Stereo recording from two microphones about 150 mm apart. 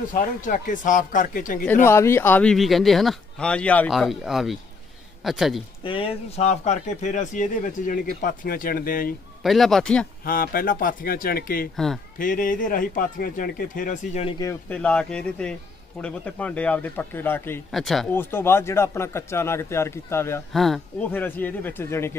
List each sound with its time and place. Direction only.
0.1 s speech: 60° left (ahead or behind)
1.7 s speech: 15° left (ahead or behind)
3.9 s speech: centre (ahead or behind)
5.9 s speech: 40° left (ahead or behind); by 9.1 s 75° left (ahead or behind)
9.4 s speech: centre (ahead or behind)
10.2 s speech: 80° left
11.7 s speech: centre (ahead or behind)
12.2 s speech: 65° left (ahead or behind)
14.7 s speech: 5° left (ahead or behind)
17.6 s speech: centre (ahead or behind)
18.1 s speech: 15° left (ahead or behind)
20.5 s speech: centre (ahead or behind)